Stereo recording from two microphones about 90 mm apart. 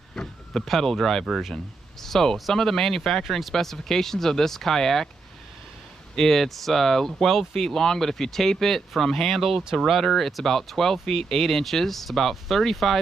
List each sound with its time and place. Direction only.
0.1 s speech: 5° left (ahead or behind)
6.1 s speech: 5° left (ahead or behind)